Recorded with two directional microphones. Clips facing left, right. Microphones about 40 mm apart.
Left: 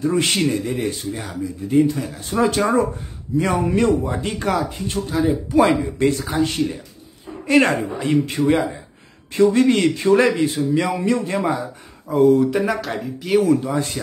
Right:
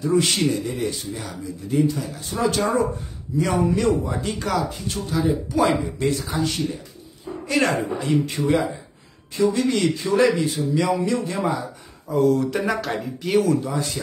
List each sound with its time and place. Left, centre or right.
0.0 s speech: left
12.1 s speech: left
12.5 s speech: centre
13.4 s speech: left